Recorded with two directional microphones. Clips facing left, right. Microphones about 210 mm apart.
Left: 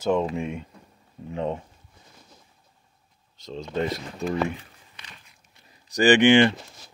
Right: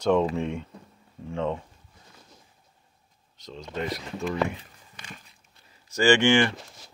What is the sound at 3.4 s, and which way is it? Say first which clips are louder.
Speech: left 4 dB; 25° left (ahead or behind).